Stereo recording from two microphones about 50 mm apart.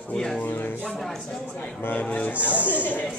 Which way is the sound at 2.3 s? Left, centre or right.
Right.